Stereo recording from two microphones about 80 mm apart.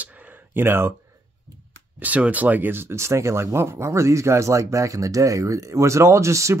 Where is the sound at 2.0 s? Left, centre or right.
Centre; by 6.5 s right.